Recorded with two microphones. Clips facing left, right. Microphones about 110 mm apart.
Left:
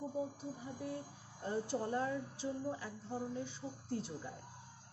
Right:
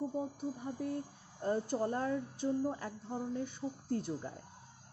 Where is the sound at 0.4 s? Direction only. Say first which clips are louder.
Right 6 dB; 50° right (ahead or behind).